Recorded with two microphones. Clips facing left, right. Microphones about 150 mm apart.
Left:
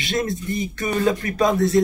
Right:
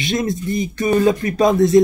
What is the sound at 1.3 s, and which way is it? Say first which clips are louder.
Speech: right 6 dB; 20° right (ahead or behind).